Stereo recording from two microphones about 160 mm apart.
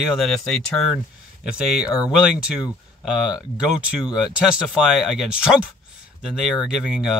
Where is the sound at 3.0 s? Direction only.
5° right (ahead or behind).